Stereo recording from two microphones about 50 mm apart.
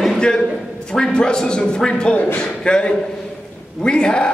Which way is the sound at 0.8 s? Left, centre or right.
Centre.